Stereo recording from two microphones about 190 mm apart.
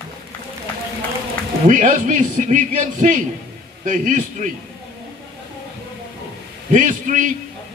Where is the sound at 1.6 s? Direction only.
40° right (ahead or behind).